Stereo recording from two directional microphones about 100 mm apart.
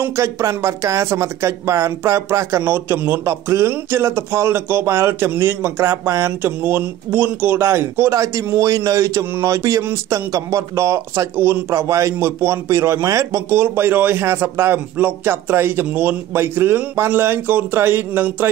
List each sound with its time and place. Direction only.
0.0 s speech: 30° right (ahead or behind)